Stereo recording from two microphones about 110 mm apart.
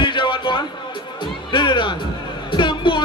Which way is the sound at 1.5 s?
45° left (ahead or behind).